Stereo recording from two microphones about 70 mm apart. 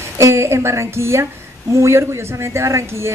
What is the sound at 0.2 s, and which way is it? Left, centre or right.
Speech, right.